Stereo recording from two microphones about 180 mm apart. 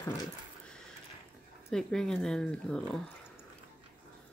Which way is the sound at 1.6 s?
5° left (ahead or behind).